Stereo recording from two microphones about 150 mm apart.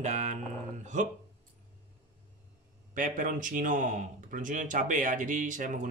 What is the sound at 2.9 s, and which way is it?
Speech, 60° right (ahead or behind).